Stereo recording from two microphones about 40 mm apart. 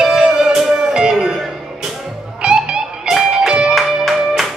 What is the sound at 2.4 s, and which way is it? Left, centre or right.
Music, centre.